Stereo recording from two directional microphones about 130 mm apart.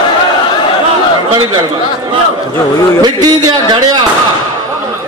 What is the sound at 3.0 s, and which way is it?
A man's voice, 30° right (ahead or behind).